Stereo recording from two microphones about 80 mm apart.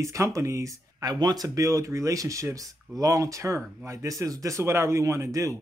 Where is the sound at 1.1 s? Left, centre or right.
Right.